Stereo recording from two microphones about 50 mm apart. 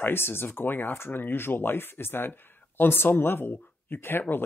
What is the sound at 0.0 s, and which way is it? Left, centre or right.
Speech, left.